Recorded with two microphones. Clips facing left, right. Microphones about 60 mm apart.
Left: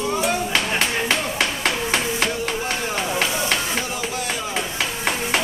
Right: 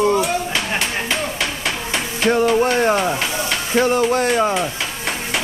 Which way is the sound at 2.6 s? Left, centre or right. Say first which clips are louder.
Right 9 dB; right.